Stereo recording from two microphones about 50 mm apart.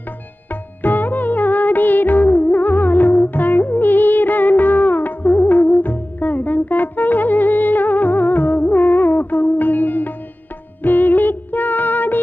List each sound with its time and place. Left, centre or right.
0.5 s music of bollywood: left
10.8 s music: left